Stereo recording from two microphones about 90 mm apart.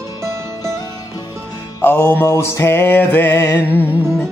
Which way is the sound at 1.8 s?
25° left (ahead or behind).